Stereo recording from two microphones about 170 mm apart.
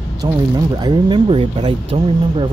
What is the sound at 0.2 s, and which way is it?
Speech, 25° right (ahead or behind).